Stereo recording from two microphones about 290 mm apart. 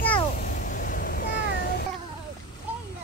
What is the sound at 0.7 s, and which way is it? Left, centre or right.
Cat, left.